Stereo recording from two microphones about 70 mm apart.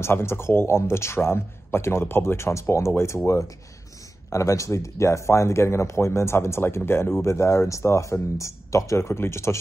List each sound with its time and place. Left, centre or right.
0.0 s a man's voice: left
4.3 s a man's voice: left